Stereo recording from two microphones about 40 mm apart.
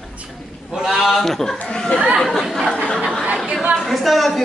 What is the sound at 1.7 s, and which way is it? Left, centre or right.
Speech, left.